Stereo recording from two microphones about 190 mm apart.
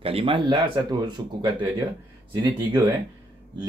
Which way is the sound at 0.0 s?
30° right (ahead or behind).